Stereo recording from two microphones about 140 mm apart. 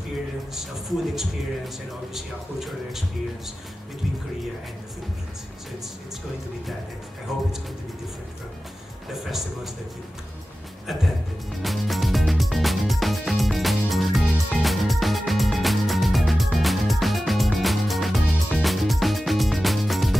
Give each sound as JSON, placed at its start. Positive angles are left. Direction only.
{"t": 2.1, "sound": "speech", "side_deg": -5}
{"t": 7.3, "sound": "speech", "side_deg": -5}
{"t": 11.6, "sound": "music", "side_deg": 0}